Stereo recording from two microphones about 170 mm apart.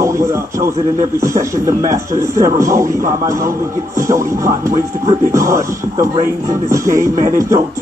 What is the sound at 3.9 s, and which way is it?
Speech, 20° right (ahead or behind).